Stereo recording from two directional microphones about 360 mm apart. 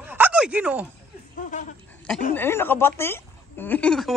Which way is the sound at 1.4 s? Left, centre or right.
Left.